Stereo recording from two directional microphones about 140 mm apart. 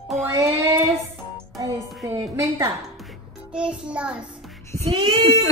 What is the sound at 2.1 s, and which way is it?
Speech, 20° right (ahead or behind).